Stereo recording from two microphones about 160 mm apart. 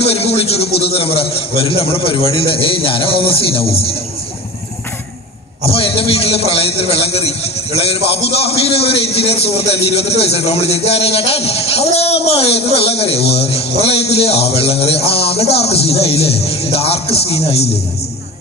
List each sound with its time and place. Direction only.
0.0 s speech: 40° left (ahead or behind)
5.7 s speech: 35° left (ahead or behind)